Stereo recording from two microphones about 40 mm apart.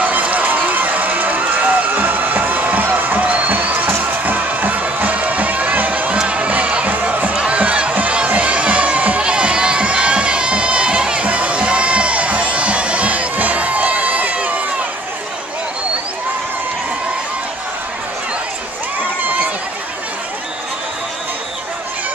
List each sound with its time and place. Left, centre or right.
0.0 s run: right
3.3 s music: right
3.5 s music: right
6.1 s music: right
9.2 s crowd: right